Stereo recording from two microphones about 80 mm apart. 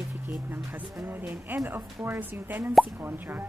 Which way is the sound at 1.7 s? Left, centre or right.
Right.